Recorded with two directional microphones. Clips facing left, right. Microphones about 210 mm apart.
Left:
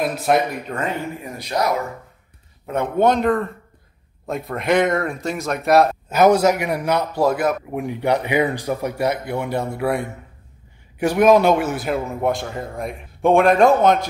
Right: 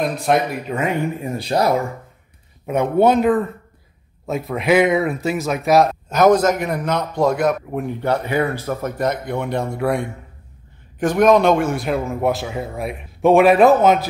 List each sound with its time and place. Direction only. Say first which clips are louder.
0.0 s a man's voice: even; 5° left (ahead or behind)
1.2 s speech: right 3 dB; 30° right (ahead or behind)
2.6 s a man's voice: right 3 dB; 15° right (ahead or behind)